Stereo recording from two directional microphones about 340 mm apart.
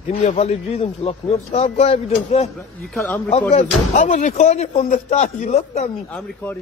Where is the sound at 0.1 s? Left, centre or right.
Centre.